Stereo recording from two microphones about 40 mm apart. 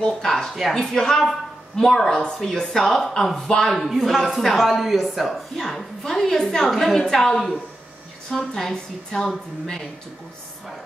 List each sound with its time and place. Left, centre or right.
0.0 s a woman's voice: centre
6.7 s speech: centre
7.0 s a woman's voice: centre
8.4 s a woman's voice: centre